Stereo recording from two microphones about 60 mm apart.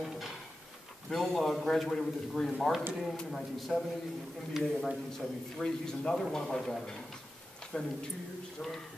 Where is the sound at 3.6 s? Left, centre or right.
Centre.